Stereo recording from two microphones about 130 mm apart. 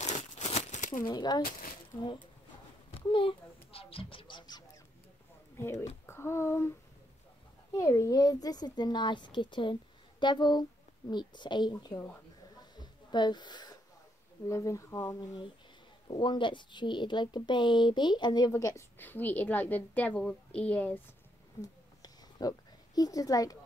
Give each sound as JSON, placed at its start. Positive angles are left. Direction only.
{"t": 0.0, "sound": "crumpling", "side_deg": 65}
{"t": 1.0, "sound": "speech", "side_deg": 35}
{"t": 2.9, "sound": "a sound", "side_deg": 40}
{"t": 5.6, "sound": "a child's voice", "side_deg": 20}
{"t": 7.7, "sound": "speech", "side_deg": 25}
{"t": 12.5, "sound": "a sound", "side_deg": 35}
{"t": 14.5, "sound": "speech", "side_deg": 25}
{"t": 15.1, "sound": "speech", "side_deg": 40}
{"t": 21.5, "sound": "a sound", "side_deg": 30}